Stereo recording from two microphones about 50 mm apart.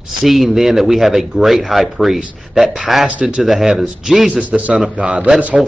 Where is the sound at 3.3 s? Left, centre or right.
Centre.